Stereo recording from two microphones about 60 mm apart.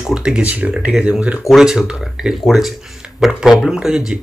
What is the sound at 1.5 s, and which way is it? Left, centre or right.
Speech, centre.